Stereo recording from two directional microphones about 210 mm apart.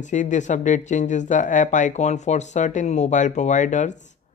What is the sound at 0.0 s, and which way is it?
Speech, 35° left (ahead or behind).